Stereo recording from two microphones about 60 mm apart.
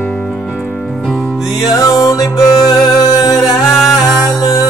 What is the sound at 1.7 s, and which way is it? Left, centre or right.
Music, left.